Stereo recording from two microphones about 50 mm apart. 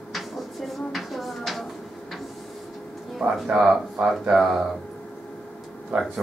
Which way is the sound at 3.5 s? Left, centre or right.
Centre.